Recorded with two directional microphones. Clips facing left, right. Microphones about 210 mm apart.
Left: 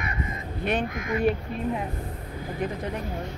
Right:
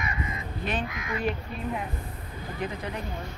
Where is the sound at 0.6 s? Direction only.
50° left (ahead or behind).